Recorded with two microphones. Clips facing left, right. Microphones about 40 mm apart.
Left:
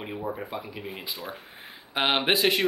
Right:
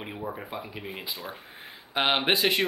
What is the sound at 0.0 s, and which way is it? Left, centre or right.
Speech, centre.